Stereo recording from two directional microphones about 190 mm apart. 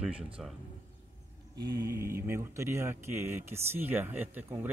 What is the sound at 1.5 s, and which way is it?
Speech, 20° right (ahead or behind).